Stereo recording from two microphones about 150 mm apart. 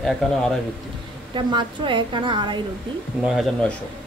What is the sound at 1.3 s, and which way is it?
A woman's voice, 30° right (ahead or behind).